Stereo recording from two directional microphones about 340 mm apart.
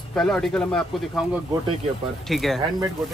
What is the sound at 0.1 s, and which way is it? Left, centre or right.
Speech, centre.